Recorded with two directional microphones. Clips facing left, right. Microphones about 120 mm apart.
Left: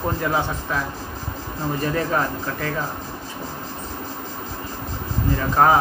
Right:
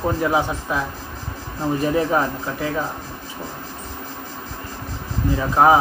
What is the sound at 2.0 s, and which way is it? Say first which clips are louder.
Speech: right 3 dB; 10° right (ahead or behind).